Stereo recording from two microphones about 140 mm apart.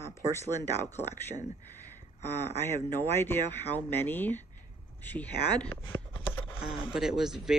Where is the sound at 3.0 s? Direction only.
15° left (ahead or behind).